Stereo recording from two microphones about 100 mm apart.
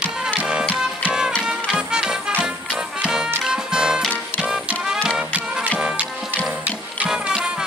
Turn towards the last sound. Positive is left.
turn(degrees=-5)  # may be behind; listen again after turning